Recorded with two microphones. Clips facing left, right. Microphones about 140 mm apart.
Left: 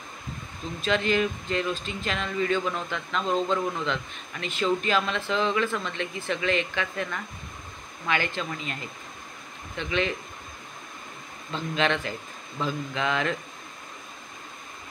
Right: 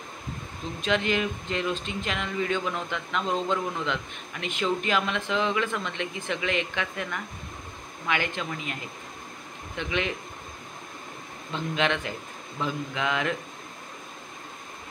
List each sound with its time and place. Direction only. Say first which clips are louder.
0.7 s speech: left 2 dB; 15° right (ahead or behind)
9.8 s speech: left 2 dB; 15° right (ahead or behind)
11.5 s speech: left 1 dB; 15° right (ahead or behind)